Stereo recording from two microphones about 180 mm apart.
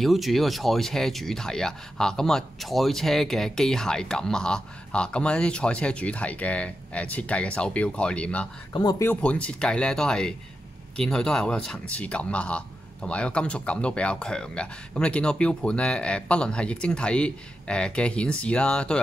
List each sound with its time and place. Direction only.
0.0 s speech: centre (ahead or behind)
8.7 s speech: 20° left (ahead or behind); by 18.9 s 5° left (ahead or behind)